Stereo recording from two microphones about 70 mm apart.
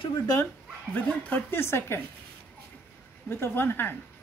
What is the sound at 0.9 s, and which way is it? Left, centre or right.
Speech, left.